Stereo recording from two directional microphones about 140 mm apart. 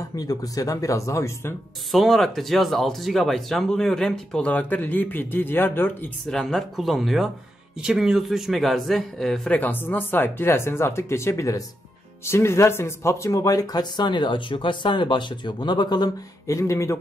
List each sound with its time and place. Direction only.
0.1 s speech: 25° left (ahead or behind)
1.9 s speech: centre (ahead or behind)
6.3 s speech: 5° left (ahead or behind); by 17.0 s 20° left (ahead or behind)